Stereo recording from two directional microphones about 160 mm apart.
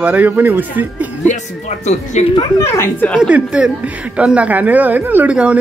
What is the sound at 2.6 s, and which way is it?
Speech, 15° left (ahead or behind).